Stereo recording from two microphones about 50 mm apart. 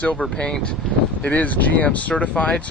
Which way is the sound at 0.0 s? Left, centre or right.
Left.